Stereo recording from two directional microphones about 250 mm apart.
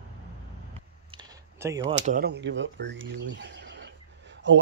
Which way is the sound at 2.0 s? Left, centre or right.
Right.